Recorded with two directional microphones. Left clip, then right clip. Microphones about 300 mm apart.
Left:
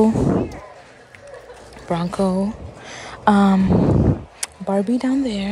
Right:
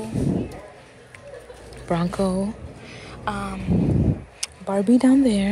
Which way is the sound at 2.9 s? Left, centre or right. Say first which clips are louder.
Left 12 dB; centre.